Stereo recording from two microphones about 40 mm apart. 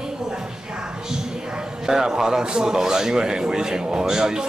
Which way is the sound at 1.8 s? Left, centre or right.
Centre.